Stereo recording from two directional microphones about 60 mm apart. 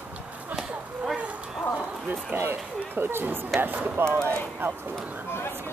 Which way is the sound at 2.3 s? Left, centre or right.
Right.